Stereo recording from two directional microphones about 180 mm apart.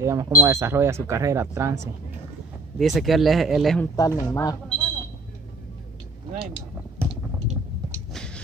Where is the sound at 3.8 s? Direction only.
15° left (ahead or behind).